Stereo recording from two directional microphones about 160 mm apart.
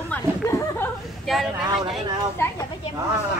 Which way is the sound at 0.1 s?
15° left (ahead or behind).